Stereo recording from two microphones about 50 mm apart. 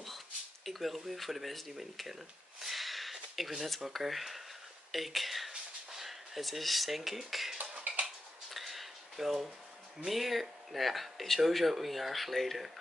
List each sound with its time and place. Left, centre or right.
0.7 s speech: centre
2.6 s a sound: centre
4.9 s speech: centre
7.9 s tick-tock: right
8.5 s a sound: centre
10.0 s speech: centre